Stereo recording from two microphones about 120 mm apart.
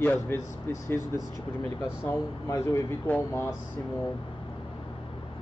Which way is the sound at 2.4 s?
25° left (ahead or behind).